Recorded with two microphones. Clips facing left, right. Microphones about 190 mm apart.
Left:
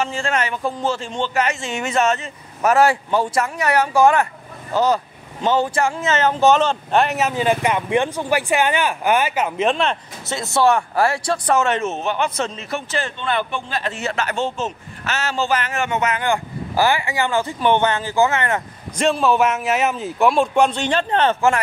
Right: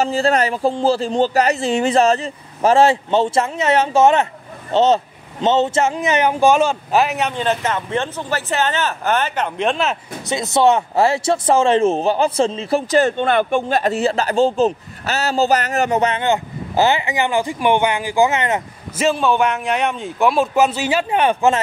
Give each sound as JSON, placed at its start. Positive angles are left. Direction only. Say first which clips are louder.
{"t": 0.0, "sound": "a man's voice", "louder": "right 6 dB", "side_deg": -35}
{"t": 10.2, "sound": "a man's voice", "louder": "right 2 dB", "side_deg": -20}
{"t": 13.9, "sound": "a man's voice", "louder": "right 7 dB", "side_deg": -35}
{"t": 18.9, "sound": "speech", "louder": "even", "side_deg": 0}